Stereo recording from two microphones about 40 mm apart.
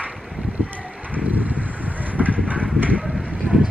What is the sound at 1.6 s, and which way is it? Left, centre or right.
Vehicle, right.